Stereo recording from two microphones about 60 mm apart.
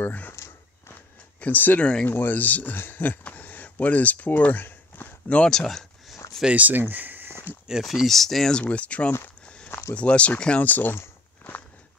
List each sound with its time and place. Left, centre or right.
0.0 s speech: left
0.3 s a sound: left
1.4 s speech: left
1.8 s speech: centre
2.0 s speech: left
5.5 s a sound: centre
6.4 s speech: right
6.8 s a sound: right
7.8 s speech: centre
8.5 s speech: left